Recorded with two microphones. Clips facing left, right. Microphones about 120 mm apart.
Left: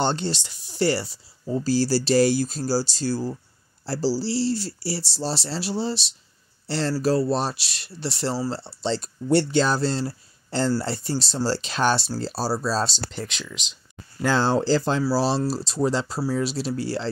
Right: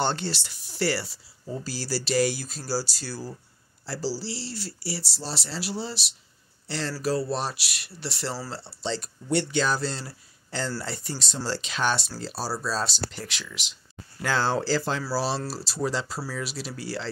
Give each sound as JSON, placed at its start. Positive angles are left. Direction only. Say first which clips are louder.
{"t": 0.0, "sound": "speech", "louder": "left 3 dB", "side_deg": 20}